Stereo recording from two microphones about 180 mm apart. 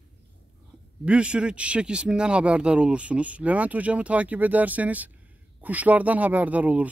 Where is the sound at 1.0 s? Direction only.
5° right (ahead or behind).